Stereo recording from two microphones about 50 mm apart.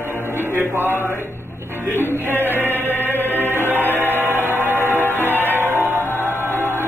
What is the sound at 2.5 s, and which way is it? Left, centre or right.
Chant, right.